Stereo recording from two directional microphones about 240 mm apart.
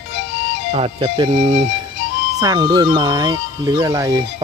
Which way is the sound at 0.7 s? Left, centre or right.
Right.